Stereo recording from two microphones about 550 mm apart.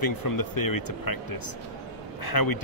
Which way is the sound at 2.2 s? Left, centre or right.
Left.